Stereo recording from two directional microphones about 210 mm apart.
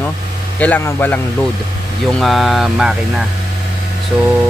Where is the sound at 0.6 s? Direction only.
10° left (ahead or behind).